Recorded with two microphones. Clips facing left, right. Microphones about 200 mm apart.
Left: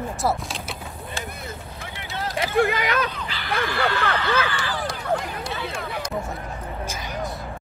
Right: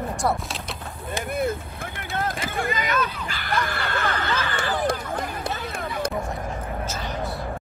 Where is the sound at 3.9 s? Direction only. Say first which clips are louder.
Left 2 dB; 50° right (ahead or behind).